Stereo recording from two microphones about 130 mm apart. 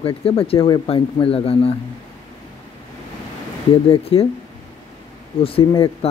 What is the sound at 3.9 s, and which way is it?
Speech, 50° left (ahead or behind).